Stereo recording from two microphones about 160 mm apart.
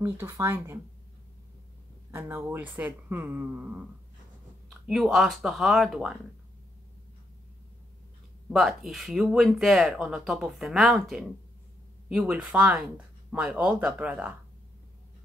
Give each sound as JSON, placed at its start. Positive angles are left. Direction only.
{"t": 0.0, "sound": "speech", "side_deg": -15}
{"t": 2.0, "sound": "speech", "side_deg": -15}
{"t": 8.5, "sound": "speech", "side_deg": 0}